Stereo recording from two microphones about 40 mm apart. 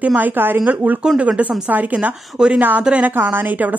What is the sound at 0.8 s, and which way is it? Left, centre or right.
Speech, right.